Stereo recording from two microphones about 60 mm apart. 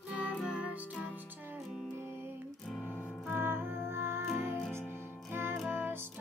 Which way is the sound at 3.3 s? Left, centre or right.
Right.